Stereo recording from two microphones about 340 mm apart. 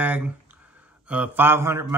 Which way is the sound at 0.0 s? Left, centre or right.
Centre.